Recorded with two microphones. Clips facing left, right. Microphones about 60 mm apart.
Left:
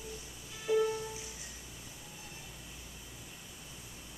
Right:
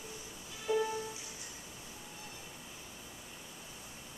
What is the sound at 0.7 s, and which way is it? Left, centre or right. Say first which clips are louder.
Music: left 3 dB; centre.